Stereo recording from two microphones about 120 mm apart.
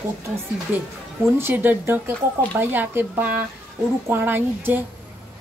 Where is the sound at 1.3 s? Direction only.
20° right (ahead or behind).